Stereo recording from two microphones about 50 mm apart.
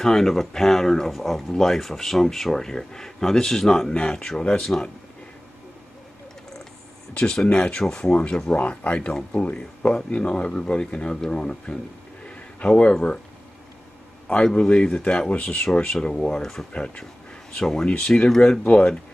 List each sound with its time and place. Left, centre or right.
0.0 s speech: centre
7.5 s speech: left
14.3 s speech: centre
16.7 s speech: left